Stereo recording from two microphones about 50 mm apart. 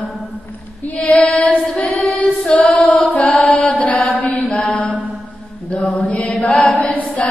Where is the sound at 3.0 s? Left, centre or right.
Centre.